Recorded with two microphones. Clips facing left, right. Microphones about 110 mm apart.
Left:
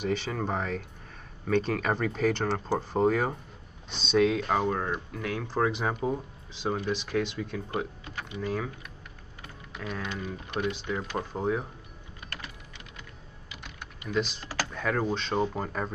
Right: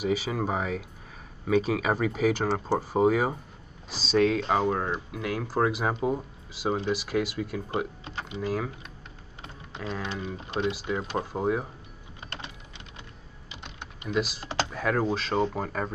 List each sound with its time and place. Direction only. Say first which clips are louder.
0.0 s speech: right 2 dB; 5° right (ahead or behind)
8.0 s typing: right 2 dB; 25° right (ahead or behind)
8.4 s speech: right 2 dB; 5° right (ahead or behind)
9.4 s power windows: right 2 dB; 25° right (ahead or behind)
10.0 s speech: right 1 dB; 20° right (ahead or behind)
10.7 s speech: right 2 dB; 5° right (ahead or behind)
11.0 s speech: right 2 dB; 20° right (ahead or behind)
11.3 s speech: right 2 dB; 10° right (ahead or behind)
12.3 s a sound: right 2 dB; 25° right (ahead or behind)
13.5 s typing: right 2 dB; 20° right (ahead or behind)
14.0 s speech: right 1 dB; 5° right (ahead or behind)